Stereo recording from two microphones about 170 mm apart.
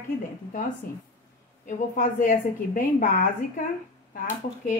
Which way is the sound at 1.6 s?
50° left (ahead or behind).